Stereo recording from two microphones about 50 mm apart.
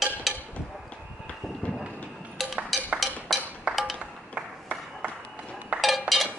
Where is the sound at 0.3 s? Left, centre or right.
Centre.